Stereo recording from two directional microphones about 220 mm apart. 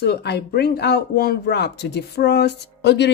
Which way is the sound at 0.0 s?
45° left (ahead or behind).